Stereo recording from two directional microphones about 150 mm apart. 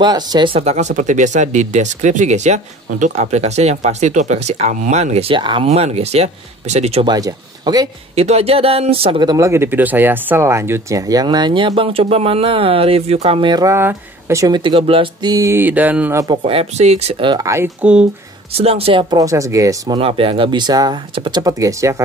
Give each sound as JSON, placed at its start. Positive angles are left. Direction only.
{"t": 0.0, "sound": "speech", "side_deg": -30}
{"t": 7.1, "sound": "speech", "side_deg": -25}
{"t": 8.2, "sound": "speech", "side_deg": -45}
{"t": 14.6, "sound": "speech", "side_deg": -35}
{"t": 15.3, "sound": "a sound", "side_deg": -20}
{"t": 16.4, "sound": "speech", "side_deg": -45}
{"t": 17.5, "sound": "a sound", "side_deg": -10}
{"t": 18.5, "sound": "speech", "side_deg": -40}
{"t": 20.0, "sound": "speech", "side_deg": -40}